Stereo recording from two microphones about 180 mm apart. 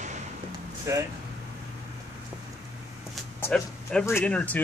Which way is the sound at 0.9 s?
15° right (ahead or behind).